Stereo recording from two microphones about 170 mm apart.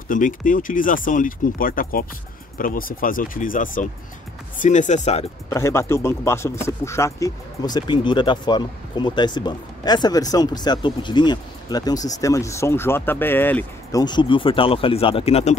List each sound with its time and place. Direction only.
0.1 s speech: 50° left (ahead or behind)
5.5 s speech: 15° left (ahead or behind)
13.9 s speech: 25° left (ahead or behind)